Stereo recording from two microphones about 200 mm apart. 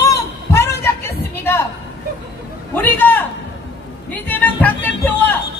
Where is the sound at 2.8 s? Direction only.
10° left (ahead or behind).